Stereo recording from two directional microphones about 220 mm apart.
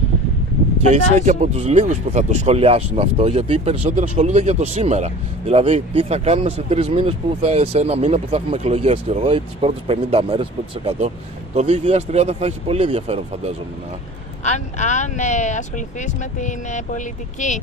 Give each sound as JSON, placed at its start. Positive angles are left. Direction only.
{"t": 1.2, "sound": "speech", "side_deg": -35}
{"t": 14.4, "sound": "speech", "side_deg": 30}